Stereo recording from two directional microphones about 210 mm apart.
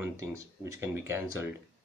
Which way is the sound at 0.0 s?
15° right (ahead or behind).